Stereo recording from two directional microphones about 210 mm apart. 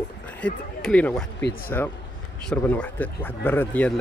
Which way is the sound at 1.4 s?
45° left (ahead or behind).